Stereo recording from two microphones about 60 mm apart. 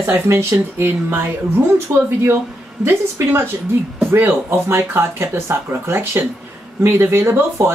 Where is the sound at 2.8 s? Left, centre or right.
Right.